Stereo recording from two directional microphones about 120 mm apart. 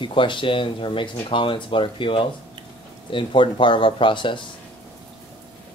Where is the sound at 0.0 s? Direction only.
45° left (ahead or behind).